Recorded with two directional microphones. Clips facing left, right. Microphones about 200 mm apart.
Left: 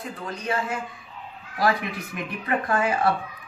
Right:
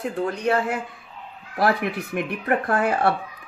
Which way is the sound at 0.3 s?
65° right (ahead or behind).